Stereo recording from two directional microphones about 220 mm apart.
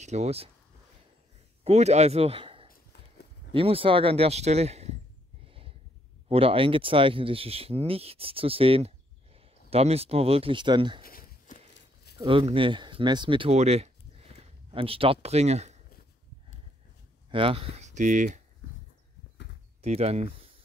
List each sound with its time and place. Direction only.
0.0 s speech: 30° right (ahead or behind)
1.6 s speech: 30° right (ahead or behind)
2.7 s clip-clop: 45° left (ahead or behind)
3.5 s speech: 25° right (ahead or behind)
6.2 s speech: 25° right (ahead or behind)
11.1 s a sound: 40° left (ahead or behind)
12.2 s speech: 25° right (ahead or behind)
17.3 s speech: 25° right (ahead or behind)
19.8 s speech: 30° right (ahead or behind)